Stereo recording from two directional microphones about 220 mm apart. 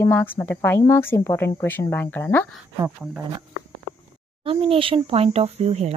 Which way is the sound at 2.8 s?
15° right (ahead or behind).